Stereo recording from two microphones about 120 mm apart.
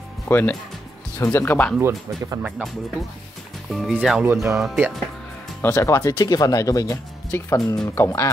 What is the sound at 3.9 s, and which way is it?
Speech, 10° right (ahead or behind).